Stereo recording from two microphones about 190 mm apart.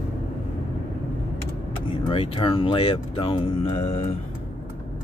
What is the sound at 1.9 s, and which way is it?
Speech, 25° left (ahead or behind).